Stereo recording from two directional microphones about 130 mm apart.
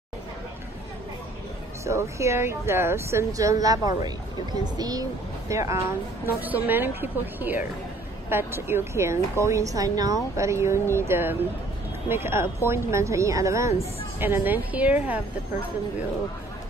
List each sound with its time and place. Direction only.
1.9 s a woman's voice: 20° right (ahead or behind)